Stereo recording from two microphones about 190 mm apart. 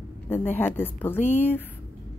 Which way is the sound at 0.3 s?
10° left (ahead or behind).